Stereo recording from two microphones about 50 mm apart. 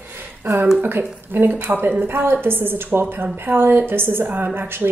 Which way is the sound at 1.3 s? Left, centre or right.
Right.